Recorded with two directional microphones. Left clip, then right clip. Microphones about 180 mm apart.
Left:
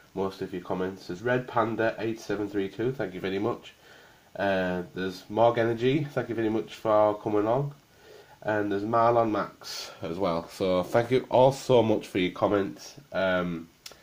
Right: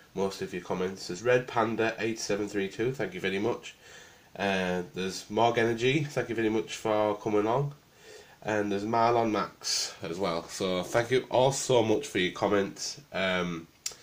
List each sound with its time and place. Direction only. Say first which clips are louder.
0.2 s speech: even; 35° left (ahead or behind)